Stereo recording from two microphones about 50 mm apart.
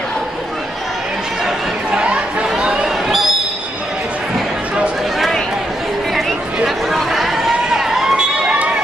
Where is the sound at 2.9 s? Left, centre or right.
Centre.